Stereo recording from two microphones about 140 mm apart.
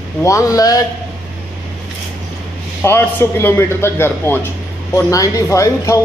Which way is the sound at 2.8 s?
15° left (ahead or behind).